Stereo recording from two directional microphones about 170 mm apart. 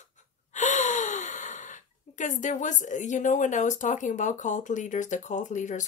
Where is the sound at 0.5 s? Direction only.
45° left (ahead or behind).